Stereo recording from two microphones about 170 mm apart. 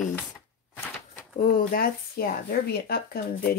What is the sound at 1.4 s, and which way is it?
Speech, 55° left (ahead or behind).